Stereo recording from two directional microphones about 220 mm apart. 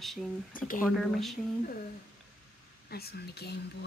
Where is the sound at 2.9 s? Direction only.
45° left (ahead or behind).